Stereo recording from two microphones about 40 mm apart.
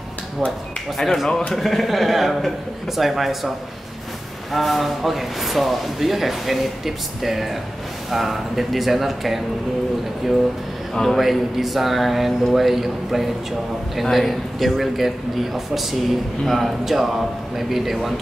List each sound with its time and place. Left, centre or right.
0.9 s speech: centre
11.0 s speech: centre